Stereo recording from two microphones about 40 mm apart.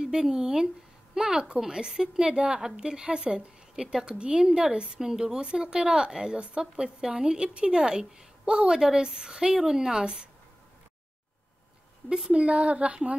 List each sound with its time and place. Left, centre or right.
0.0 s a woman's voice: centre
12.3 s speech: right